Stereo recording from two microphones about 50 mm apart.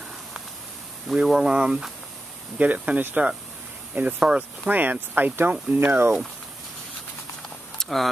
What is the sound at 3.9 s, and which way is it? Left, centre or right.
Speech, right.